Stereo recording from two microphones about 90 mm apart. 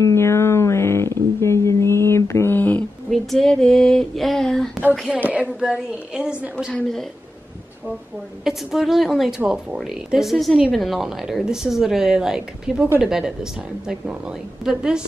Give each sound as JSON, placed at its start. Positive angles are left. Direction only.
{"t": 0.0, "sound": "a sound", "side_deg": 30}
{"t": 3.1, "sound": "a woman's voice", "side_deg": 5}
{"t": 5.1, "sound": "a woman's voice", "side_deg": -15}
{"t": 8.5, "sound": "a woman's voice", "side_deg": 0}